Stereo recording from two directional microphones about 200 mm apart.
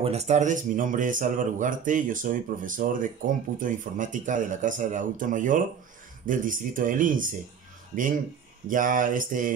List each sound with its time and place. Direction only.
0.0 s speech: 35° right (ahead or behind)
8.6 s speech: 40° right (ahead or behind)